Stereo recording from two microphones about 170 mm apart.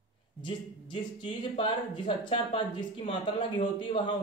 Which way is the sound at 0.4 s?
30° left (ahead or behind).